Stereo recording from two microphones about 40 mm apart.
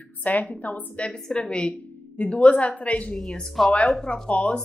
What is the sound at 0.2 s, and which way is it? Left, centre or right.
Speech, left.